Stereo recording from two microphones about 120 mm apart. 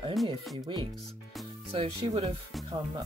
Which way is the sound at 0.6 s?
40° right (ahead or behind).